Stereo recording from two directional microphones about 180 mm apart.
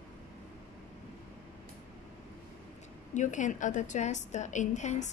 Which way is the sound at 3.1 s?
45° left (ahead or behind).